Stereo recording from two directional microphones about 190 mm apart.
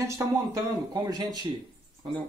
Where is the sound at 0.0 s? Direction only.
15° right (ahead or behind).